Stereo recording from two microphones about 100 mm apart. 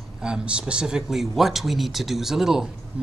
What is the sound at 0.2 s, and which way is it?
A man's voice, 10° right (ahead or behind).